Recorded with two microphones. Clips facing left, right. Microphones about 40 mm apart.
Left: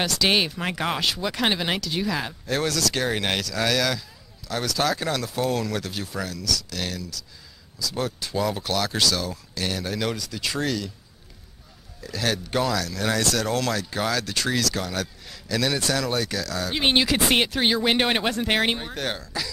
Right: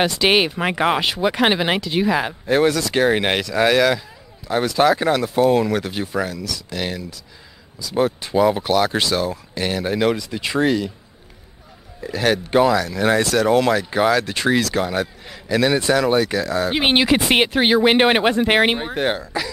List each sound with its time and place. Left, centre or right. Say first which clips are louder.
0.0 s speech: right 6 dB; right
12.0 s speech: right 7 dB; right
13.2 s speech: right 6 dB; centre
13.5 s speech: right 9 dB; right